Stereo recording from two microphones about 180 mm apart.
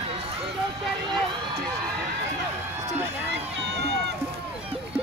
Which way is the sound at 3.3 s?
70° right (ahead or behind).